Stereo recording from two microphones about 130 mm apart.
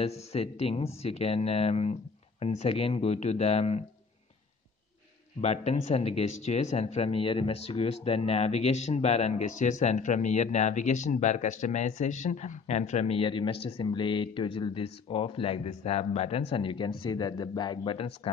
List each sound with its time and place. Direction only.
0.0 s speech: 50° left (ahead or behind)
5.4 s speech: 55° left (ahead or behind)